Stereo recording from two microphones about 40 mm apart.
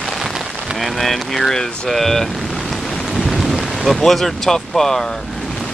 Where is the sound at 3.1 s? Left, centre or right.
Centre.